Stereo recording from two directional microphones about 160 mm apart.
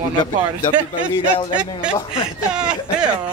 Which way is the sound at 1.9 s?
35° left (ahead or behind).